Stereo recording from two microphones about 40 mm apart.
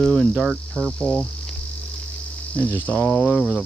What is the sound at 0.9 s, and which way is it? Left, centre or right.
Cricket, centre.